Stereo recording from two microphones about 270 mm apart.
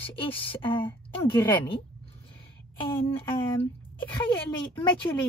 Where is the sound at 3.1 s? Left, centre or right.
Centre.